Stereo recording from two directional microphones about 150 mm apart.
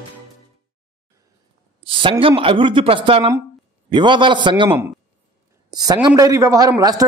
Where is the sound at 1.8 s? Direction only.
35° right (ahead or behind).